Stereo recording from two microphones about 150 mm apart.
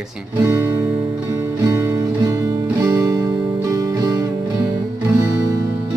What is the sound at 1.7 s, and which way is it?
Music, 20° right (ahead or behind).